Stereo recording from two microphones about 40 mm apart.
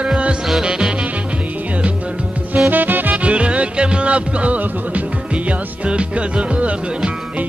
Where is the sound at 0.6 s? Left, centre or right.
Centre.